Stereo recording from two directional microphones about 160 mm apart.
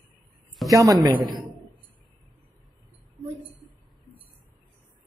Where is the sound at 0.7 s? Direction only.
20° right (ahead or behind).